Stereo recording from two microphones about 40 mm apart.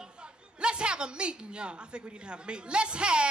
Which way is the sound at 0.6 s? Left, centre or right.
Right.